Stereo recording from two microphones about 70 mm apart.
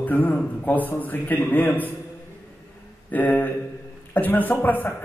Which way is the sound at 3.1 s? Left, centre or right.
Left.